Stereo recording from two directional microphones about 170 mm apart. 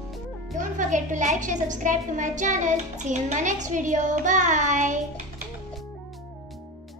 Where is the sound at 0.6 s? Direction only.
50° right (ahead or behind).